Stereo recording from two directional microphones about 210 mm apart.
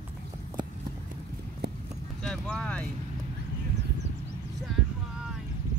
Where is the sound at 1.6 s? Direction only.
50° right (ahead or behind).